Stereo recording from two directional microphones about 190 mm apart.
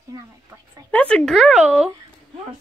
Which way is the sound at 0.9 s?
5° left (ahead or behind).